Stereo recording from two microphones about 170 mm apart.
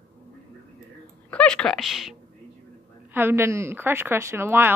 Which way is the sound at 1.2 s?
5° left (ahead or behind).